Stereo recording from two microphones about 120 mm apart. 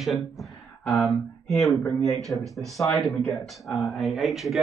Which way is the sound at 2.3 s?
Centre (ahead or behind).